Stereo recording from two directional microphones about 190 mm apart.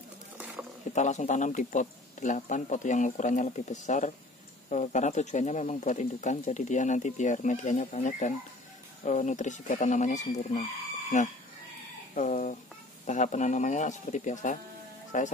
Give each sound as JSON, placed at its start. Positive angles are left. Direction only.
{"t": 0.9, "sound": "speech", "side_deg": 40}